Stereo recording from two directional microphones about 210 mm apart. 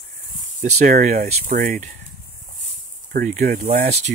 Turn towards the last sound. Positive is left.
turn(degrees=-35)  # may be behind; listen again after turning